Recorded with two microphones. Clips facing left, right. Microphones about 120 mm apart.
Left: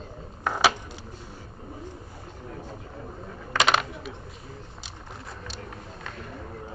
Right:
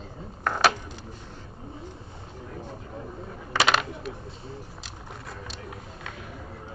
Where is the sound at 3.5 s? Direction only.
Centre (ahead or behind).